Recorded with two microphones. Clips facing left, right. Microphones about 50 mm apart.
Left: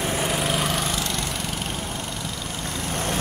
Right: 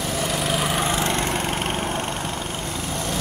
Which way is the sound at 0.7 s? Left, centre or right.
Right.